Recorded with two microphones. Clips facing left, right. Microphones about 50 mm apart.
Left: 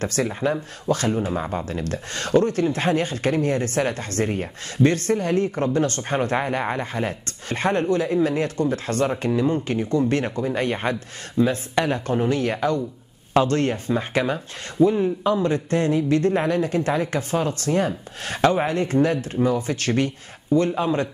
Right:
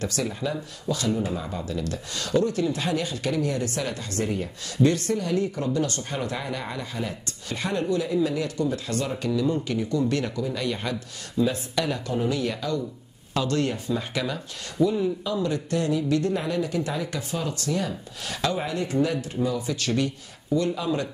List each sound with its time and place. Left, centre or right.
0.0 s speech: left